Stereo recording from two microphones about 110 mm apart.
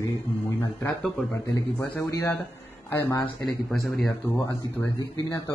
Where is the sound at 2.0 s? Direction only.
30° left (ahead or behind).